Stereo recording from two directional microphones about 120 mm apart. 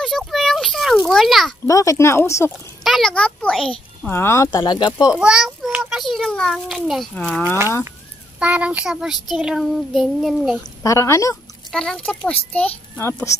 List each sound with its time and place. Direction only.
0.0 s a sound: centre (ahead or behind)
1.7 s speech: 25° left (ahead or behind)
2.8 s a child's voice: centre (ahead or behind)
4.1 s speech: 20° left (ahead or behind)
4.6 s speech: 40° left (ahead or behind)
5.1 s a child's voice: 10° right (ahead or behind)
8.4 s a child's voice: 10° right (ahead or behind)
10.8 s speech: 25° left (ahead or behind)
11.7 s a child's voice: 5° left (ahead or behind); by 13.4 s 25° left (ahead or behind)